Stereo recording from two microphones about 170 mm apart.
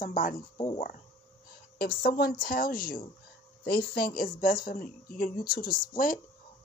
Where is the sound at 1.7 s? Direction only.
60° left (ahead or behind).